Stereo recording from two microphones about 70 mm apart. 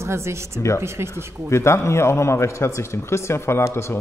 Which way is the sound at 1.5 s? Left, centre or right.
Left.